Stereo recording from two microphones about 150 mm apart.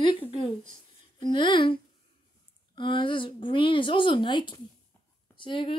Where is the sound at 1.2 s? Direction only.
35° left (ahead or behind).